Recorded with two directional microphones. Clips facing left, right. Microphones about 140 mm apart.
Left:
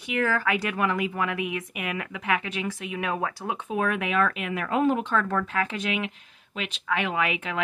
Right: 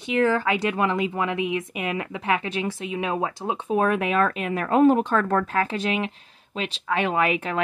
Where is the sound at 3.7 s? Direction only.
35° right (ahead or behind).